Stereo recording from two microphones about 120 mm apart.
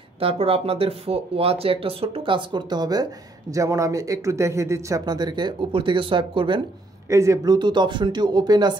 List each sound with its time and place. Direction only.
0.2 s speech: 50° right (ahead or behind)
7.1 s speech: 25° right (ahead or behind)
7.5 s speech: 40° right (ahead or behind)